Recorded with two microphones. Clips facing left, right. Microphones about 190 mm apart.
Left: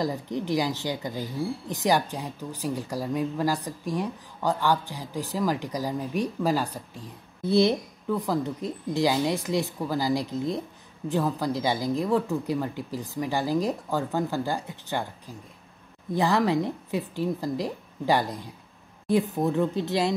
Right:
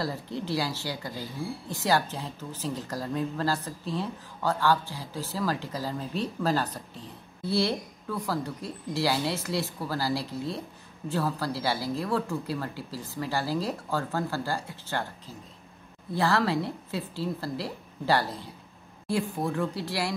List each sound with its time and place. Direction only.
0.0 s speech: 15° left (ahead or behind)